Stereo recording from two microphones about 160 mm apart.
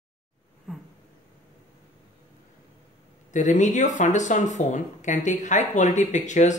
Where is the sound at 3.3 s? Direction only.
50° left (ahead or behind).